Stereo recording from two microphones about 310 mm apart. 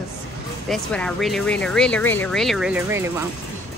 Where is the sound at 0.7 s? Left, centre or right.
Centre.